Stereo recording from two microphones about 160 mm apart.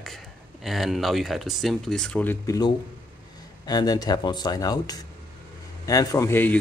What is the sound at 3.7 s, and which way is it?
A man's voice, 25° left (ahead or behind).